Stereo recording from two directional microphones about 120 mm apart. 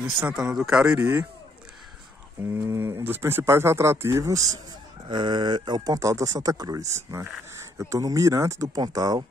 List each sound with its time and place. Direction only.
0.2 s speech: 10° right (ahead or behind)
2.4 s speech: 20° right (ahead or behind)
5.0 s speech: 40° right (ahead or behind)